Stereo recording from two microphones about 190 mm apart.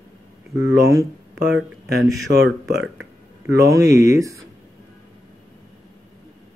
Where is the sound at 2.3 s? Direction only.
60° right (ahead or behind).